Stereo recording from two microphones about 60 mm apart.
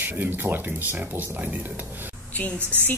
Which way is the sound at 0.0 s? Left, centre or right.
Right.